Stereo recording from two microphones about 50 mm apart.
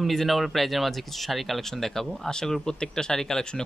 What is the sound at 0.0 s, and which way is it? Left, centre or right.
A man's voice, centre.